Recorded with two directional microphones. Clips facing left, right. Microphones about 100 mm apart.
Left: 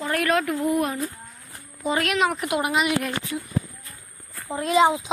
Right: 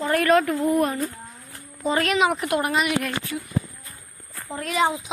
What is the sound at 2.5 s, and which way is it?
Speech, 15° left (ahead or behind).